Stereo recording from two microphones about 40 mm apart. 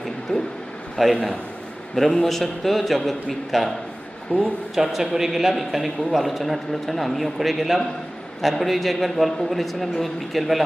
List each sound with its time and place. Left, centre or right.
0.3 s speech: left
1.0 s a man's voice: centre
2.2 s a man's voice: centre